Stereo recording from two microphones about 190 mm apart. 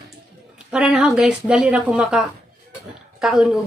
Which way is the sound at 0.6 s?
5° right (ahead or behind).